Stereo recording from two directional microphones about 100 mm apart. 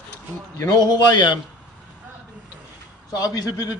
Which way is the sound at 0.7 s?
45° left (ahead or behind).